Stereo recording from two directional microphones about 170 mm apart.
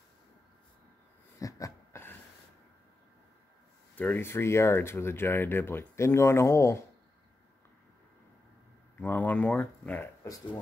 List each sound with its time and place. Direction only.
1.4 s a sound: 15° left (ahead or behind)
3.9 s speech: 10° left (ahead or behind)
9.0 s speech: 10° left (ahead or behind)